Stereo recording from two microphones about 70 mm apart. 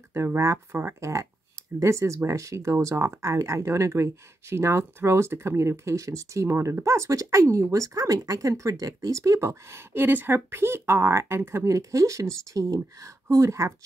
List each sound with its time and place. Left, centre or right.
0.1 s speech: right